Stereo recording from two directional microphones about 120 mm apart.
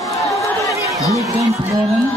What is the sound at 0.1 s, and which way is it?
Chatter, 25° left (ahead or behind).